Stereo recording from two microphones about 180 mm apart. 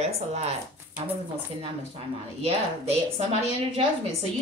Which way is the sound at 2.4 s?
35° right (ahead or behind).